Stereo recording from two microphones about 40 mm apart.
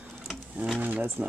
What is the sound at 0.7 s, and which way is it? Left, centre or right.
Speech, right.